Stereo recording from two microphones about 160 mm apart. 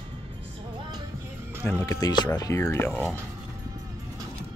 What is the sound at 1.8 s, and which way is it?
Speech, 20° left (ahead or behind).